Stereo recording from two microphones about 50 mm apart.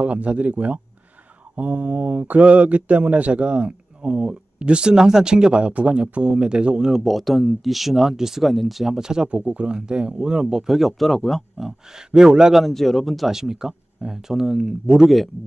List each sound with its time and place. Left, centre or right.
0.0 s speech: right
6.9 s speech: centre
10.4 s speech: centre
12.1 s speech: centre
12.6 s speech: centre